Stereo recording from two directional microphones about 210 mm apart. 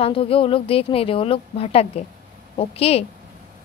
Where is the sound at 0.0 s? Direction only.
25° left (ahead or behind).